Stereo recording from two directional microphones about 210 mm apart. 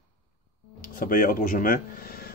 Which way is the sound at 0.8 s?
40° left (ahead or behind).